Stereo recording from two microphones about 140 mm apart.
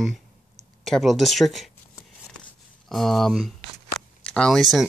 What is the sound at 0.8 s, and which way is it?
Speech, centre (ahead or behind).